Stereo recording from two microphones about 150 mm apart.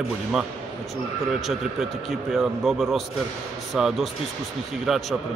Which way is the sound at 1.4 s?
Centre (ahead or behind).